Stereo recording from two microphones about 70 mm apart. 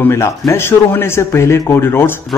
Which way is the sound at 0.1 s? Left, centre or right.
Left.